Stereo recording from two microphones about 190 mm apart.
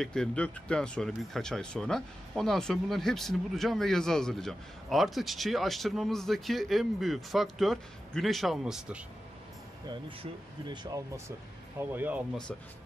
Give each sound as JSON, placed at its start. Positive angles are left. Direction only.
{"t": 0.0, "sound": "speech", "side_deg": 5}
{"t": 10.7, "sound": "speech", "side_deg": -20}
{"t": 11.9, "sound": "speech", "side_deg": -10}